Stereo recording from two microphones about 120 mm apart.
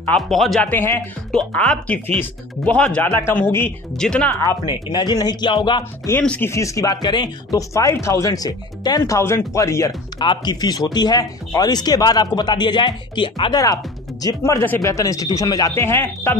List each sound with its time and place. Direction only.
0.3 s speech: centre (ahead or behind)
0.7 s speech: 20° left (ahead or behind)
3.9 s speech: 5° left (ahead or behind)
4.4 s speech: 35° left (ahead or behind)
6.2 s speech: 10° left (ahead or behind)
6.5 s speech: 25° left (ahead or behind)
10.2 s speech: 40° left (ahead or behind)
14.2 s speech: 25° left (ahead or behind)